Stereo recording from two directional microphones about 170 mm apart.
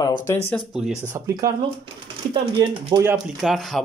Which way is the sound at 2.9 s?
25° right (ahead or behind).